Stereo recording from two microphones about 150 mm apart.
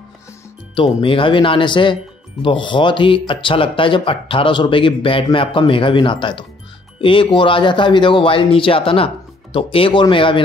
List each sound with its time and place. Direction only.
0.7 s speech: 35° left (ahead or behind)